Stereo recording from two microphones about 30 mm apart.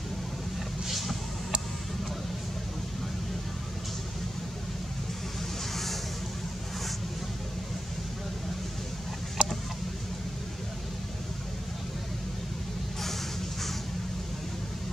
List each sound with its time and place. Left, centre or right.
0.8 s vehicle: centre
9.4 s chicken: right